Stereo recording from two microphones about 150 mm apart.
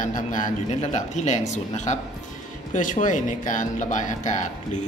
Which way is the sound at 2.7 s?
60° left (ahead or behind).